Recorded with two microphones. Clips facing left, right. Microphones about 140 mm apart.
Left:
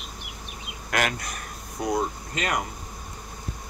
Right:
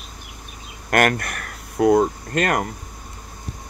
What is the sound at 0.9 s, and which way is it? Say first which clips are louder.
Speech: right 8 dB; 55° right (ahead or behind).